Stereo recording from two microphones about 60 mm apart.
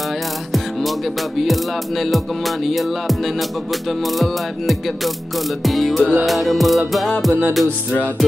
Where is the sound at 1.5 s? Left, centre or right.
Centre.